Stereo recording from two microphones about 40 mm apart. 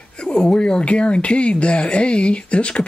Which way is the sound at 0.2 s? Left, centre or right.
Left.